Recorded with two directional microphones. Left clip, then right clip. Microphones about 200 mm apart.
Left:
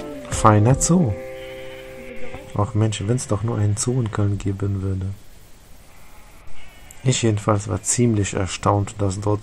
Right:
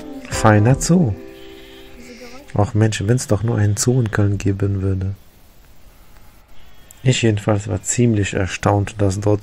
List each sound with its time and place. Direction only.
0.3 s speech: 10° right (ahead or behind)
2.5 s speech: 20° right (ahead or behind)
7.0 s speech: 10° right (ahead or behind)